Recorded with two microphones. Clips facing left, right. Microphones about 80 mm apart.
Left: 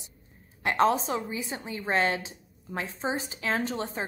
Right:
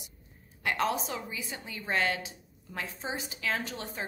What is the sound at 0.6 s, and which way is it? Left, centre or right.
A woman's voice, left.